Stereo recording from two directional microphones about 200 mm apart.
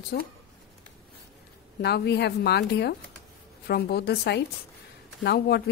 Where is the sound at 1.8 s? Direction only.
55° left (ahead or behind).